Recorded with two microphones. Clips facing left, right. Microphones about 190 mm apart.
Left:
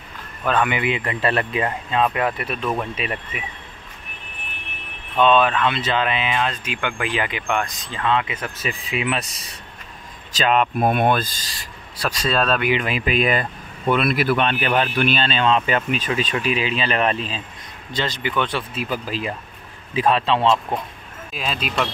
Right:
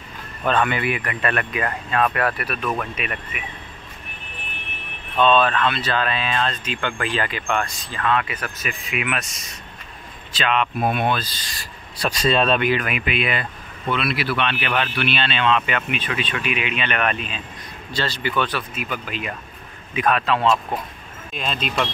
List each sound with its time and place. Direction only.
0.5 s speech: 15° left (ahead or behind); by 1.7 s 30° left (ahead or behind)
1.7 s speech: 15° left (ahead or behind)
5.1 s speech: 15° left (ahead or behind); by 11.3 s 50° left (ahead or behind)
12.0 s speech: centre (ahead or behind)
12.8 s speech: 35° left (ahead or behind)
17.9 s speech: 20° left (ahead or behind)
18.8 s speech: 35° left (ahead or behind)
21.3 s speech: 5° left (ahead or behind)